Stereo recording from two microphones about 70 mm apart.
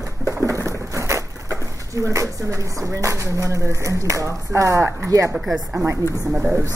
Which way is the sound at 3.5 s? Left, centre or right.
Right.